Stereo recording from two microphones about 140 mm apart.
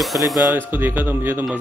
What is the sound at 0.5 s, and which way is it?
Speech, 15° right (ahead or behind).